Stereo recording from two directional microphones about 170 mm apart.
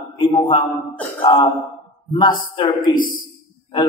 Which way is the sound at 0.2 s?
30° left (ahead or behind).